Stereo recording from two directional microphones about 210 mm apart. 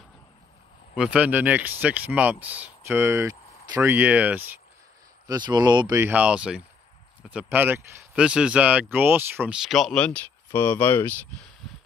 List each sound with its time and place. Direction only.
0.9 s speech: 5° right (ahead or behind)
5.2 s speech: 20° right (ahead or behind); by 11.2 s 10° left (ahead or behind)